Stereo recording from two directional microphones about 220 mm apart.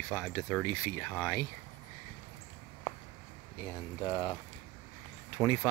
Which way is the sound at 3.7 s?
20° left (ahead or behind).